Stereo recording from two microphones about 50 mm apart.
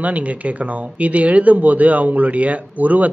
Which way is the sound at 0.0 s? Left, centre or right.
Right.